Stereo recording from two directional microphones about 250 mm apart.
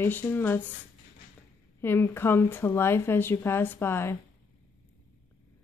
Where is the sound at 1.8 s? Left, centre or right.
Centre.